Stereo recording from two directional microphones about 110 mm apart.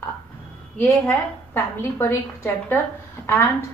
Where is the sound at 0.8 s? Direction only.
20° left (ahead or behind).